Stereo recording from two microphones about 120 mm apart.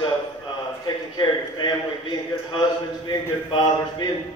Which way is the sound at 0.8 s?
40° left (ahead or behind).